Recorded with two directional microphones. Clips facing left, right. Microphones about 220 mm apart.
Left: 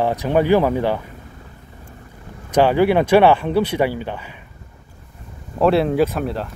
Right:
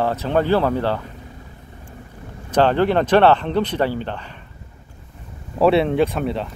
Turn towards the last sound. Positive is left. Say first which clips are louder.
# even
turn(degrees=0)  # may be behind; listen again after turning